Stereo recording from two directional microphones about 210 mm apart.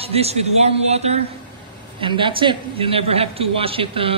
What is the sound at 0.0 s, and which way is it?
A man's voice, 30° right (ahead or behind).